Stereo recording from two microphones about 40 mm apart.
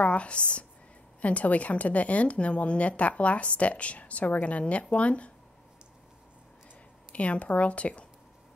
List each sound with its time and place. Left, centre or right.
0.0 s a woman's voice: left
7.1 s a woman's voice: left